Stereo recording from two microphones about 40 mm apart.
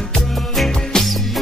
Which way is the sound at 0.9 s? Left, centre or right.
Centre.